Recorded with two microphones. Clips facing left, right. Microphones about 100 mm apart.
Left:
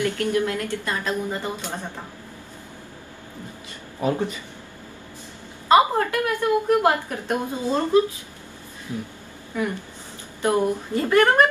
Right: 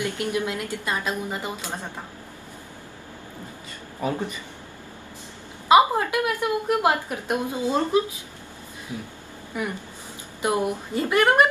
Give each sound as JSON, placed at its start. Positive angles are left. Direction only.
{"t": 0.0, "sound": "a woman's voice", "side_deg": -15}
{"t": 5.7, "sound": "a woman's voice", "side_deg": -15}
{"t": 9.5, "sound": "a woman's voice", "side_deg": -15}